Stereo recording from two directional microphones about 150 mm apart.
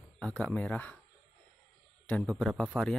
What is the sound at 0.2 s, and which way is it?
Speech, 10° left (ahead or behind).